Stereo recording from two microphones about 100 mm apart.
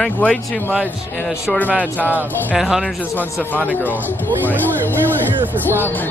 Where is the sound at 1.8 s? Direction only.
15° left (ahead or behind).